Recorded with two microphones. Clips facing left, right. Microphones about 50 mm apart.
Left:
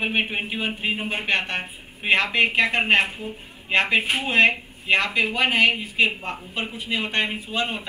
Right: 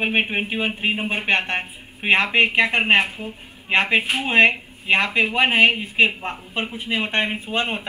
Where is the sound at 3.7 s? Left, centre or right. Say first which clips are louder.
Right 1 dB; right.